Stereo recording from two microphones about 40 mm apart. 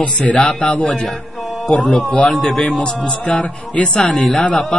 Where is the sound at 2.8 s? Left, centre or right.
Left.